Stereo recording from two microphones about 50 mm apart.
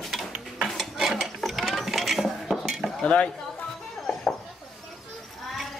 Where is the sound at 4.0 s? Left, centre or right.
Centre.